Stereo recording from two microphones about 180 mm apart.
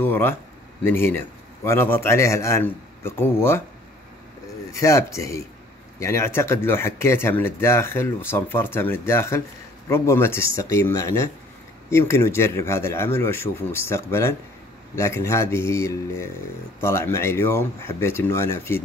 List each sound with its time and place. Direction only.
0.0 s speech: 10° left (ahead or behind)
4.7 s speech: 15° left (ahead or behind)